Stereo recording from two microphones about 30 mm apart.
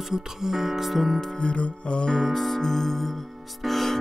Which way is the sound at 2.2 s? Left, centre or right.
Centre.